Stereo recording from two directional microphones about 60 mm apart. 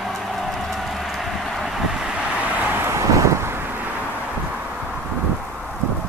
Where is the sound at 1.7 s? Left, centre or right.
Centre.